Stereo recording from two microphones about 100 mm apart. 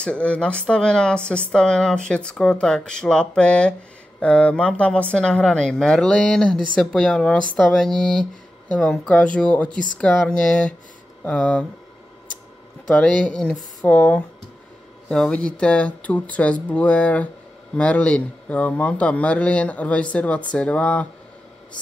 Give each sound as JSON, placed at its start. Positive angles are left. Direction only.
{"t": 0.0, "sound": "speech", "side_deg": 10}
{"t": 12.8, "sound": "speech", "side_deg": 10}